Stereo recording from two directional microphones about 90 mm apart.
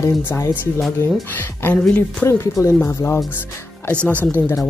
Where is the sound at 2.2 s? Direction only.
30° left (ahead or behind).